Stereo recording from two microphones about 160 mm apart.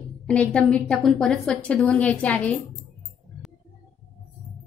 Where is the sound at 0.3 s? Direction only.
5° left (ahead or behind).